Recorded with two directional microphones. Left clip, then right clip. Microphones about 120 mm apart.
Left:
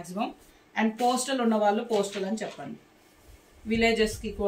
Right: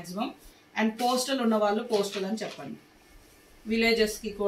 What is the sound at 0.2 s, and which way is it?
Speech, 15° left (ahead or behind).